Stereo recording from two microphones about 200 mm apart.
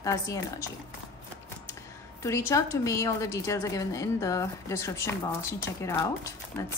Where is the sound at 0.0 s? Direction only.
15° left (ahead or behind).